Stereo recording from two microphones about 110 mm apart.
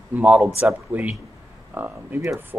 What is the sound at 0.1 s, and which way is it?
Speech, 15° right (ahead or behind).